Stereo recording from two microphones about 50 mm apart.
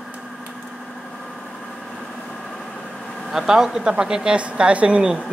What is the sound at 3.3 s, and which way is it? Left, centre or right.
Speech, centre.